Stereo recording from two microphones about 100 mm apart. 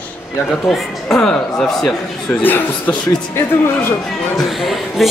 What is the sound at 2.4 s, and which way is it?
Speech, 20° left (ahead or behind).